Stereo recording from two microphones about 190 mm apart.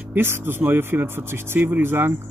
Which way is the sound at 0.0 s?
10° right (ahead or behind).